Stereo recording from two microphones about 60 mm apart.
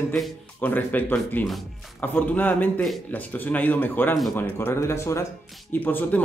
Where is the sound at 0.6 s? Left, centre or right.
Left.